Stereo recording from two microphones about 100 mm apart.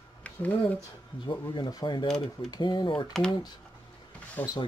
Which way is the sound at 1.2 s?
50° left (ahead or behind).